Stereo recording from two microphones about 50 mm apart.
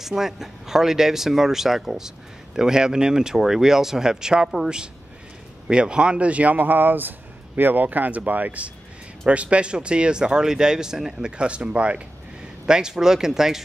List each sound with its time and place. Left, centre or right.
0.0 s speech: centre